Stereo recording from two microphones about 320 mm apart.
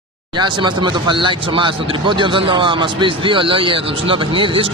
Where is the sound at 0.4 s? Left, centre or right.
Centre.